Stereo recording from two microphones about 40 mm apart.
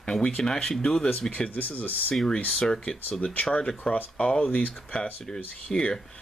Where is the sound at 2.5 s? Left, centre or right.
Left.